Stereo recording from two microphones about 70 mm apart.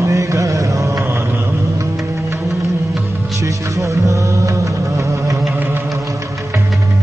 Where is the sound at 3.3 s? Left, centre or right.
Right.